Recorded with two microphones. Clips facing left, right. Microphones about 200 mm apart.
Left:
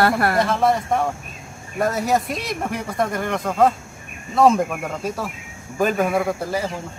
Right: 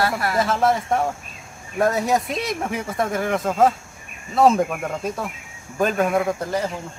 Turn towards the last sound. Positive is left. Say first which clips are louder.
# even
turn(degrees=5)  # may be behind; listen again after turning